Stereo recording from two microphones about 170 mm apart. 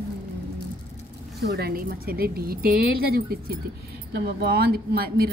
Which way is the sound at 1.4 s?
70° right (ahead or behind).